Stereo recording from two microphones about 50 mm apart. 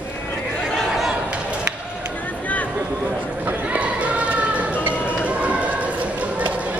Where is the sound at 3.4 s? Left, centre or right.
Right.